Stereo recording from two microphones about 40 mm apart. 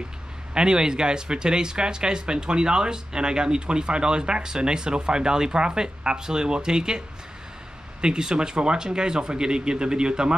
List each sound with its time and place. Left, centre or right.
0.6 s speech: right
8.0 s speech: centre